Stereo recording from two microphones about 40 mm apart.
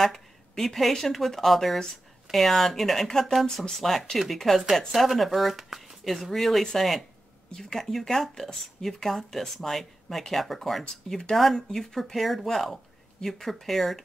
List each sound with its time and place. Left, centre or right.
0.0 s speech: centre
6.3 s speech: centre
10.8 s speech: centre
11.3 s speech: centre